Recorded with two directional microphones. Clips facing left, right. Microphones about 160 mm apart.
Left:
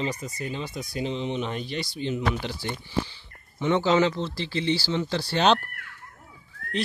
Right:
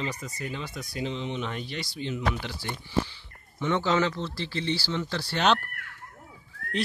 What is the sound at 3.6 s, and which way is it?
Speech, 20° left (ahead or behind).